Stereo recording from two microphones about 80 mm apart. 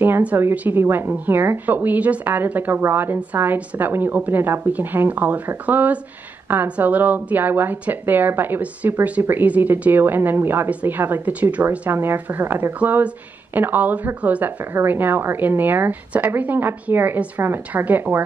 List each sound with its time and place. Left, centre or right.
0.0 s a woman's voice: right
11.9 s a woman's voice: right